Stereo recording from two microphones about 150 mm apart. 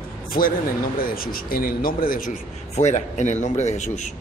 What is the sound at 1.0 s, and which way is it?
A man's voice, 75° left (ahead or behind).